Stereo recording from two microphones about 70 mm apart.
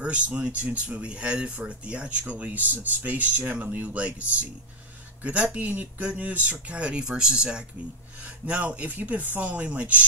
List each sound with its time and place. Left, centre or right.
0.0 s speech: centre